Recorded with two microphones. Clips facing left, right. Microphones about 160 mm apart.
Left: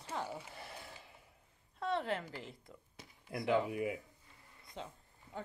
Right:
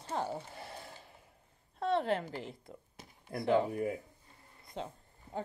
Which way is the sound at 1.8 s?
30° right (ahead or behind).